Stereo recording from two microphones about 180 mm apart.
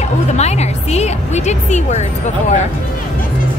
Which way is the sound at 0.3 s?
40° left (ahead or behind).